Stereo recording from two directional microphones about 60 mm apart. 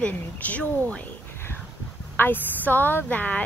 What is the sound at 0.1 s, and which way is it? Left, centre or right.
Speech, left.